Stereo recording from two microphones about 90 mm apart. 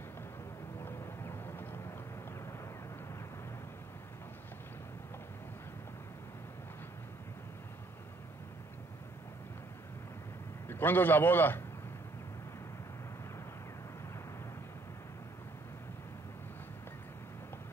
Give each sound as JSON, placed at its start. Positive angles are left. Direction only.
{"t": 0.8, "sound": "vehicle", "side_deg": 25}
{"t": 10.7, "sound": "a man's voice", "side_deg": 20}